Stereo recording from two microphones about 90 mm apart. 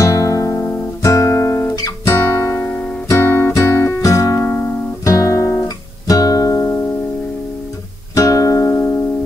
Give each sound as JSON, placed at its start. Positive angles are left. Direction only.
{"t": 0.0, "sound": "guitar", "side_deg": 35}
{"t": 2.5, "sound": "guitar", "side_deg": 20}
{"t": 3.1, "sound": "music", "side_deg": 25}
{"t": 4.0, "sound": "music", "side_deg": 40}
{"t": 5.0, "sound": "guitar", "side_deg": 35}
{"t": 6.0, "sound": "guitar", "side_deg": 40}
{"t": 8.1, "sound": "music", "side_deg": 40}